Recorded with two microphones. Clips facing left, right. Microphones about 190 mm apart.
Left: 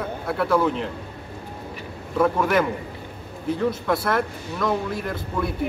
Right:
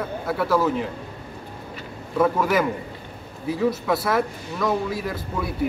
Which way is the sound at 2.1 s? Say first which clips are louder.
Even; 5° right (ahead or behind).